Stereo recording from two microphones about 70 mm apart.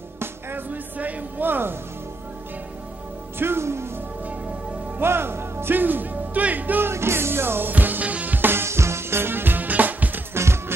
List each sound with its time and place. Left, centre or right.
0.2 s music: right
3.3 s speech: right
4.9 s speech: right
6.9 s music: right
10.3 s music: right